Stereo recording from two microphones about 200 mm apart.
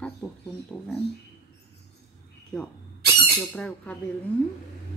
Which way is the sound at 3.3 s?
5° left (ahead or behind).